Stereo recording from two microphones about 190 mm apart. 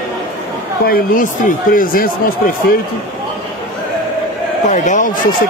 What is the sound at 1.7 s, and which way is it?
Speech, 50° left (ahead or behind).